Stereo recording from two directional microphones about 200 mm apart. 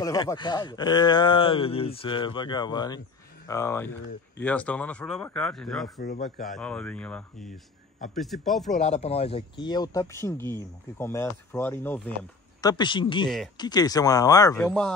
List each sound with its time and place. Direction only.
0.0 s speech: 15° left (ahead or behind); by 6.0 s centre (ahead or behind)
6.0 s speech: 40° left (ahead or behind)
6.4 s speech: 5° left (ahead or behind)
8.7 s speech: 35° left (ahead or behind); by 12.7 s 10° left (ahead or behind)
12.7 s speech: 25° left (ahead or behind)
14.7 s speech: 5° left (ahead or behind)